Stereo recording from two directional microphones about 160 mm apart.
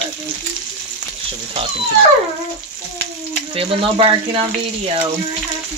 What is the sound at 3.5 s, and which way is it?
Speech, 35° right (ahead or behind).